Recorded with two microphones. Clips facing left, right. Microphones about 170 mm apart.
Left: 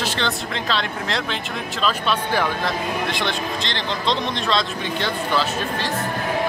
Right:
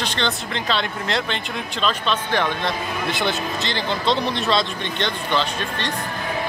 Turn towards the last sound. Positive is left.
turn(degrees=5)  # may be behind; listen again after turning